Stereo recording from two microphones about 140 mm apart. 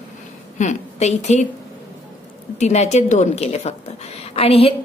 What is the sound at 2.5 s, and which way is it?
A woman's voice, 55° left (ahead or behind).